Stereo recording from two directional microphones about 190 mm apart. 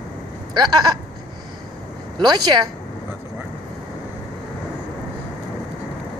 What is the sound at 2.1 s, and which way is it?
Speech, 25° right (ahead or behind).